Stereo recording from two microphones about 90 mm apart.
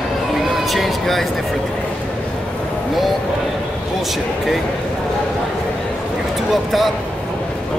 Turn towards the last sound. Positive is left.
turn(degrees=0)  # may be behind; listen again after turning